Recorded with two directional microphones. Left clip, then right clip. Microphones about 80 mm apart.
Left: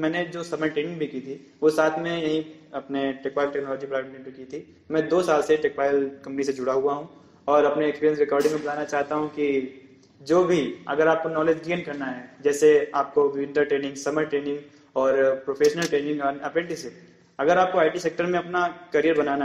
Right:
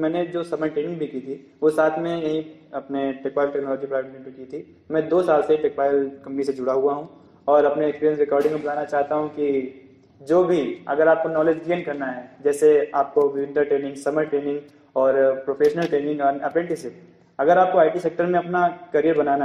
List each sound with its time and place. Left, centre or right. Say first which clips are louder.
0.0 s a man's voice: right 3 dB; right
14.1 s speech: right 3 dB; centre
14.4 s a man's voice: right 3 dB; right